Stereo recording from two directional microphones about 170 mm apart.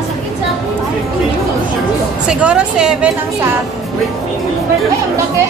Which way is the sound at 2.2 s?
5° right (ahead or behind).